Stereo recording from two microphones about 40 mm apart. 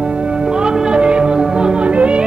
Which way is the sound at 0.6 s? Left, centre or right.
Right.